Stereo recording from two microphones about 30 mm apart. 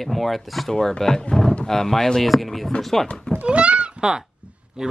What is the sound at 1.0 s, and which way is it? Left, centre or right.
Speech, centre.